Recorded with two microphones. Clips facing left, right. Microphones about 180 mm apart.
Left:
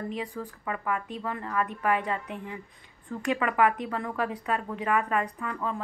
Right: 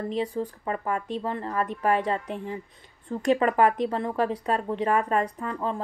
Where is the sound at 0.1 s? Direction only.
25° right (ahead or behind).